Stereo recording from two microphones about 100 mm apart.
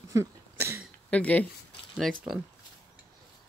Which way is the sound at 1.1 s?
15° left (ahead or behind).